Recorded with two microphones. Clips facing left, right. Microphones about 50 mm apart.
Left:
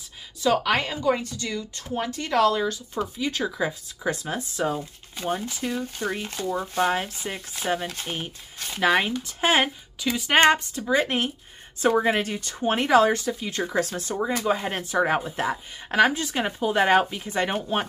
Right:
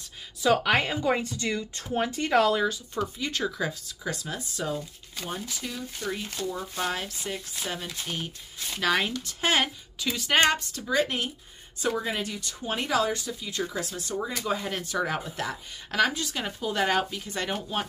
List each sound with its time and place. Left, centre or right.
0.4 s speech: centre
2.9 s speech: centre
4.0 s speech: left
8.8 s speech: left
12.0 s speech: left